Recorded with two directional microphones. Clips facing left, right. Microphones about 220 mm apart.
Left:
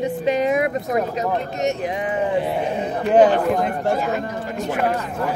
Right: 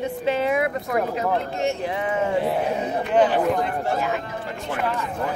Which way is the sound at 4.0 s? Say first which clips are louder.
Left 3 dB; 40° left (ahead or behind).